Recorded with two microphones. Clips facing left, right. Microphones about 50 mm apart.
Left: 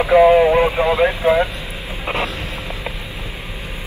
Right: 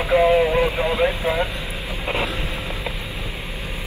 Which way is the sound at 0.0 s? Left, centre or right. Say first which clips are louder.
Left 6 dB; centre.